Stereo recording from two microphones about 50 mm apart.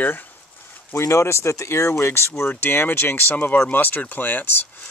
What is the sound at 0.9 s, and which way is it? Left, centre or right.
Speech, left.